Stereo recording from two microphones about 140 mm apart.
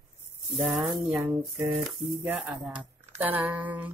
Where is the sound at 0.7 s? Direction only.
15° right (ahead or behind).